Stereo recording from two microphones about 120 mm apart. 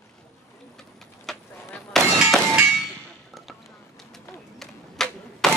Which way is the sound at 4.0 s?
Centre (ahead or behind).